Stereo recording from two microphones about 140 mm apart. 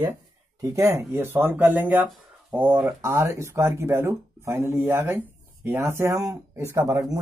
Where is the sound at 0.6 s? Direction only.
20° right (ahead or behind).